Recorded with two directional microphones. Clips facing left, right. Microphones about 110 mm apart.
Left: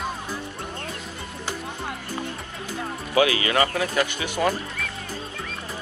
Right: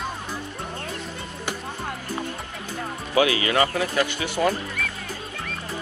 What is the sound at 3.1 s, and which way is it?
Speech, 30° right (ahead or behind).